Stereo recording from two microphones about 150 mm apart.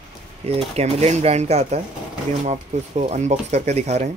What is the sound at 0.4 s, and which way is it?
Speech, 45° right (ahead or behind).